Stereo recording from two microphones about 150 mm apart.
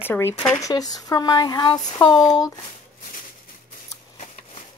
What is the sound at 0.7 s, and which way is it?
Speech, 25° left (ahead or behind).